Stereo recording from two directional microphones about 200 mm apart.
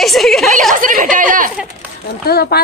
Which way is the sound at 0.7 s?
40° right (ahead or behind).